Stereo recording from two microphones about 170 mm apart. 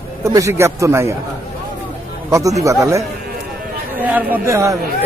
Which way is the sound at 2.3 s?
20° right (ahead or behind).